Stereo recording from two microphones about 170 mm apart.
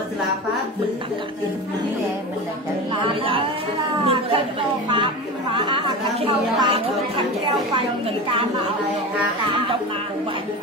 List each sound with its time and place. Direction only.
4.1 s a woman's voice: 30° right (ahead or behind)